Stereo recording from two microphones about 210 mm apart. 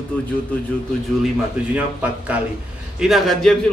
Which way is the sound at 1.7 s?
5° right (ahead or behind).